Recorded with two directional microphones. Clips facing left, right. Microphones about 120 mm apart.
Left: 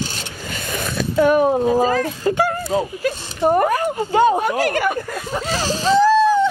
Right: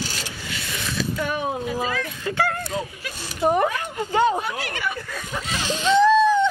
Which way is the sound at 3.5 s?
45° left (ahead or behind).